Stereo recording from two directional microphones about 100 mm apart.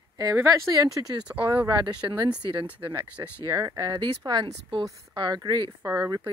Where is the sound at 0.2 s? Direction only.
35° right (ahead or behind).